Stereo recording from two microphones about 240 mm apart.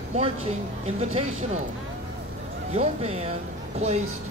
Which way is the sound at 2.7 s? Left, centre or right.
Right.